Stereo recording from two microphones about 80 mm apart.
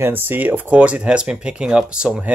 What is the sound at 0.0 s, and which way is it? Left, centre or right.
Speech, right.